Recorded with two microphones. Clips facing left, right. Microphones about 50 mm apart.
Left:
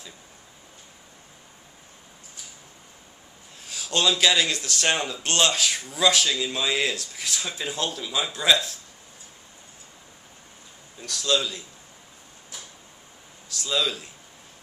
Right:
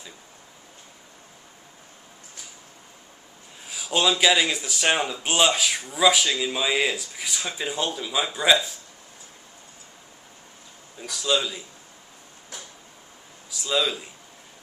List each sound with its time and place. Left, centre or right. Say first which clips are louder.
3.6 s speech: right 1 dB; centre
11.0 s speech: even; centre
13.5 s speech: right 2 dB; centre